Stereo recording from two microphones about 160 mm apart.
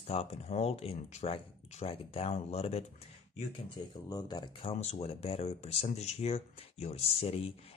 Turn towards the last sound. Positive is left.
turn(degrees=35)  # may be behind; listen again after turning